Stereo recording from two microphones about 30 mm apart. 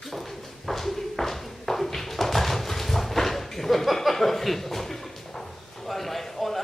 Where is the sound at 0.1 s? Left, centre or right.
Centre.